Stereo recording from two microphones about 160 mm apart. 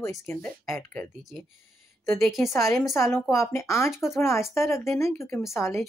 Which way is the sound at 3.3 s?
20° left (ahead or behind).